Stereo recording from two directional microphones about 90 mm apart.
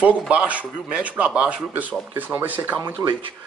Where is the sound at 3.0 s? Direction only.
40° right (ahead or behind).